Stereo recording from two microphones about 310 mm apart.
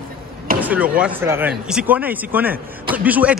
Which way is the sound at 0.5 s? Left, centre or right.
Centre.